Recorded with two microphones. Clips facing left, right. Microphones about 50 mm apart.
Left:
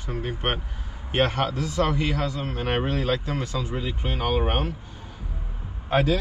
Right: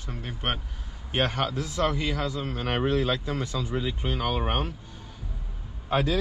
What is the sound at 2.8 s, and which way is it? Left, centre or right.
Speech, left.